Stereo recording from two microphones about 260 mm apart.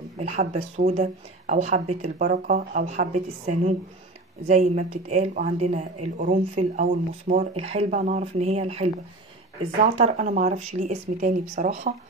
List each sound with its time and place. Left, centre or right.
0.2 s speech: right